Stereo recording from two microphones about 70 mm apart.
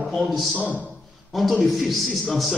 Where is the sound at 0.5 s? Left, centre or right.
Right.